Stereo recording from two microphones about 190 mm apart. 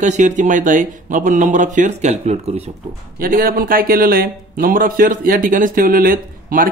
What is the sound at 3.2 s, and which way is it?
Speech, 50° right (ahead or behind).